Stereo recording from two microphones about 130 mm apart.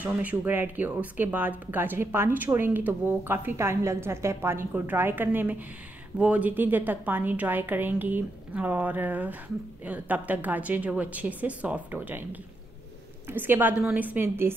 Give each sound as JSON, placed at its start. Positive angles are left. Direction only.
{"t": 0.0, "sound": "speech", "side_deg": -10}